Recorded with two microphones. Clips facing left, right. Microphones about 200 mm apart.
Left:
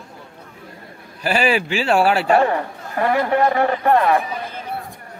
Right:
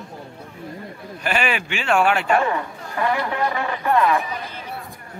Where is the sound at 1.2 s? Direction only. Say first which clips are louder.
Left 5 dB; 35° left (ahead or behind).